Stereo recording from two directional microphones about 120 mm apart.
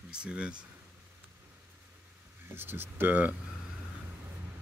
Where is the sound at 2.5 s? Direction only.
15° right (ahead or behind).